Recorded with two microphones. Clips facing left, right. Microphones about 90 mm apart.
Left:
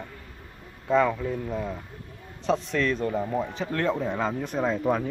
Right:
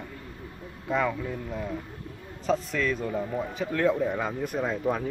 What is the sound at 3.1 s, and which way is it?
Speech, 20° left (ahead or behind).